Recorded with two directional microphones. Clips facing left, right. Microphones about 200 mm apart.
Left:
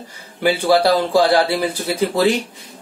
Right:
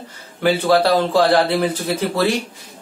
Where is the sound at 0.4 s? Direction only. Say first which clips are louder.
Even; 15° left (ahead or behind).